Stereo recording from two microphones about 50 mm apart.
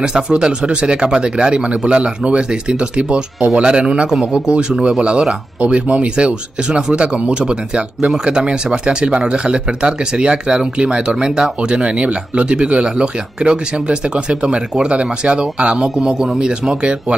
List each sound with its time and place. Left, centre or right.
0.0 s speech: centre